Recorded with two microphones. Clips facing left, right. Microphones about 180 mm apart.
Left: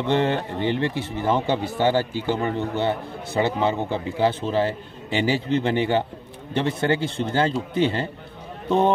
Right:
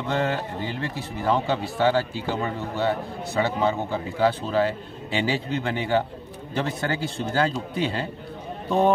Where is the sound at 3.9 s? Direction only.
20° left (ahead or behind).